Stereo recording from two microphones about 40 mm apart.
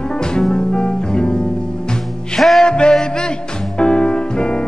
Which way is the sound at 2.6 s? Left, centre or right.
Left.